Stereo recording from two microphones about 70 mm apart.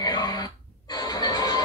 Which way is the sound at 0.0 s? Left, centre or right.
Left.